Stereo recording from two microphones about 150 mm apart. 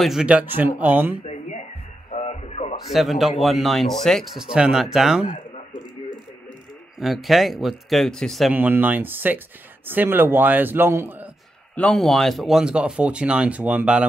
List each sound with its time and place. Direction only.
0.0 s speech: 5° right (ahead or behind)
1.2 s music: 50° left (ahead or behind)
2.9 s speech: centre (ahead or behind)
7.0 s speech: centre (ahead or behind)
8.5 s speech: 10° right (ahead or behind)
11.7 s speech: 5° left (ahead or behind)